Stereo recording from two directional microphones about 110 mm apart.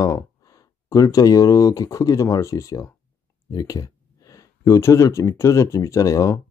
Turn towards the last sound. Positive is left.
turn(degrees=30)  # may be behind; listen again after turning